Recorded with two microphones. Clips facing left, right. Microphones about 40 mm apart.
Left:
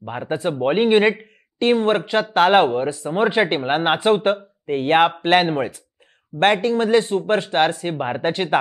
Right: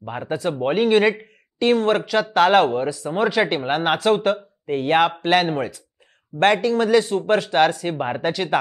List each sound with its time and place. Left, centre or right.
0.0 s speech: centre
8.2 s speech: left